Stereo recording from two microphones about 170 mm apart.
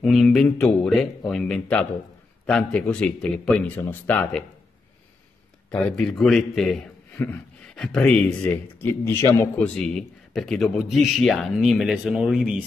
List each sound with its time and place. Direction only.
0.0 s a man's voice: centre (ahead or behind)
5.7 s a man's voice: 5° left (ahead or behind)
10.3 s a man's voice: centre (ahead or behind)